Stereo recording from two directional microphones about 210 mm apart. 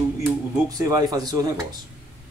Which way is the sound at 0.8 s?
15° right (ahead or behind).